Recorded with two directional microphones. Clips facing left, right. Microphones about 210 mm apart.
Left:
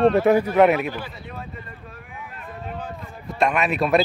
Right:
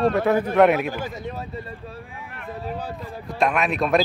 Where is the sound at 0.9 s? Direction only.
45° right (ahead or behind).